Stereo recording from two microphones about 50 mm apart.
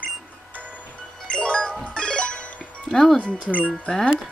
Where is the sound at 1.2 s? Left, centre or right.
Left.